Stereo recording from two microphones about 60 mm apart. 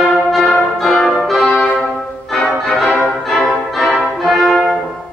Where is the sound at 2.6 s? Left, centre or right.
Centre.